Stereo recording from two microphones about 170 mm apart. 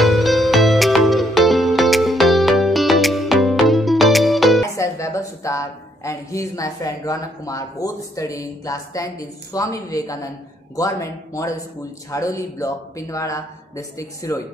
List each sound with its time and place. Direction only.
0.0 s music: centre (ahead or behind)
4.7 s a woman's voice: 15° left (ahead or behind)